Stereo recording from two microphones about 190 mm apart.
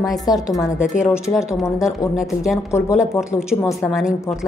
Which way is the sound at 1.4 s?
15° left (ahead or behind).